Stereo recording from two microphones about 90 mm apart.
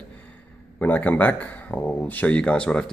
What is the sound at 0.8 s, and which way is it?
Speech, 20° left (ahead or behind).